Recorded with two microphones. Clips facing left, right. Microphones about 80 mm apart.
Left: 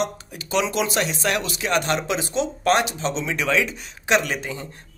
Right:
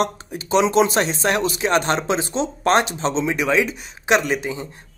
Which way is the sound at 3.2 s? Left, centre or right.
Centre.